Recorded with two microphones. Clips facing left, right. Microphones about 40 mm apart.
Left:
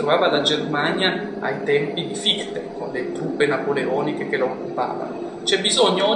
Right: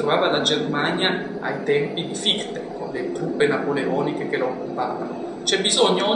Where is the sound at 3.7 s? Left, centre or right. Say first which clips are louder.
Left 1 dB; centre.